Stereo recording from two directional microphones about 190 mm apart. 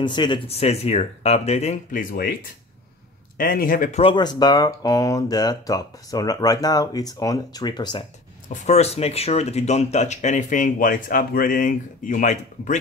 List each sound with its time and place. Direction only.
0.0 s speech: 25° left (ahead or behind); by 2.3 s 45° left (ahead or behind)
3.3 s speech: 50° left (ahead or behind)
4.0 s speech: 25° left (ahead or behind)
8.5 s speech: 40° left (ahead or behind)